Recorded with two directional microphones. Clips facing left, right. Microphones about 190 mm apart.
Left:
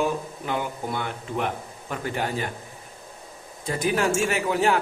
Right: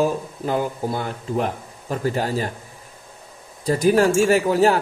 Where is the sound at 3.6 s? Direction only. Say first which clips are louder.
Right 7 dB; 40° right (ahead or behind).